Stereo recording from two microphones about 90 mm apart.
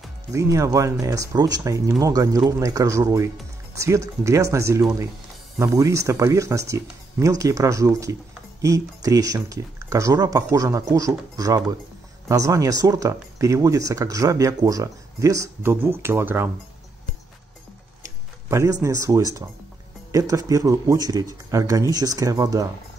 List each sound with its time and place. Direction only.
0.3 s speech: 35° right (ahead or behind)
18.0 s tick-tock: 35° right (ahead or behind)
20.1 s speech: 40° right (ahead or behind)